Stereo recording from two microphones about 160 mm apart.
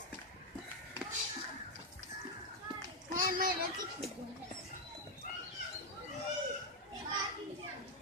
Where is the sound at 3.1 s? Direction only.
60° right (ahead or behind).